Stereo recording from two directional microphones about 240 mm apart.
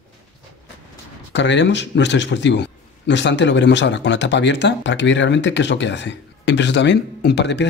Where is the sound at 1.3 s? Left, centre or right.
Left.